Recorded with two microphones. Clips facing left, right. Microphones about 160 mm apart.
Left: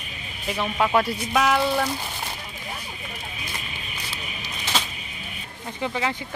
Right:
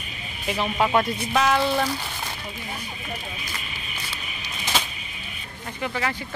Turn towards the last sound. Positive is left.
turn(degrees=20)  # may be behind; listen again after turning